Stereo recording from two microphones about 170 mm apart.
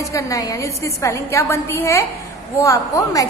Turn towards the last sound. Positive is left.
turn(degrees=20)  # may be behind; listen again after turning